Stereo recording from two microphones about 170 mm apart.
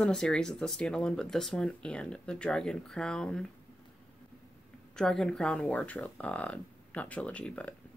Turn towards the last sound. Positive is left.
turn(degrees=5)  # may be behind; listen again after turning